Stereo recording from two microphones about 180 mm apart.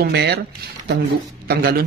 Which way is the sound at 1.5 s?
60° right (ahead or behind).